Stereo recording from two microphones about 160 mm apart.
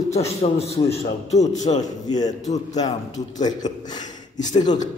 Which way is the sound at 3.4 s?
25° left (ahead or behind).